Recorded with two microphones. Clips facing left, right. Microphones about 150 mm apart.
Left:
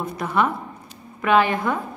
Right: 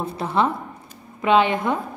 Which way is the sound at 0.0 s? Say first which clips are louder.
Right 1 dB; 30° right (ahead or behind).